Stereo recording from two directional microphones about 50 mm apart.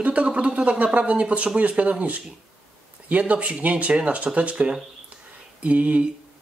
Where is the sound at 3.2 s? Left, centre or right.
Right.